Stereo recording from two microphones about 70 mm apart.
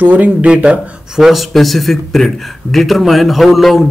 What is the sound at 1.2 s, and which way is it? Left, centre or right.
A man's voice, centre.